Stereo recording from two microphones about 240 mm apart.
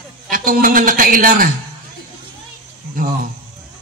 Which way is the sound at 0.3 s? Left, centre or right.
Right.